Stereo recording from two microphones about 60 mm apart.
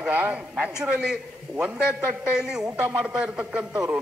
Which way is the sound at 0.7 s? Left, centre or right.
Centre.